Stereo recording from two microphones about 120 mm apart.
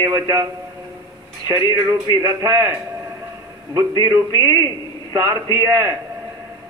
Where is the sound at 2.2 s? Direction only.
30° right (ahead or behind).